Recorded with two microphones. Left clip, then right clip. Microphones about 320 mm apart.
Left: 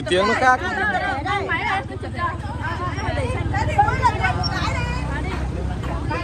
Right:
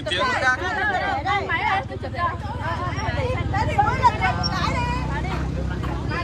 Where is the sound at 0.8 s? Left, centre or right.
Right.